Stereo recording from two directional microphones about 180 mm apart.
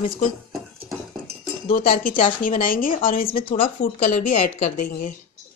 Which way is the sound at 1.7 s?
55° left (ahead or behind).